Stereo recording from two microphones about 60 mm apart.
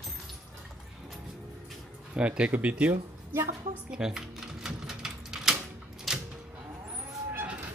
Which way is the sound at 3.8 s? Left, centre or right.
Centre.